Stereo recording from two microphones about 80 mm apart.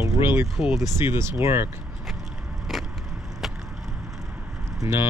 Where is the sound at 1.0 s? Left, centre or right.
Right.